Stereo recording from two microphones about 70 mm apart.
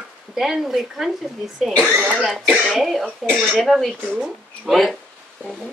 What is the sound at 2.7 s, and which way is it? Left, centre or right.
Speech, centre.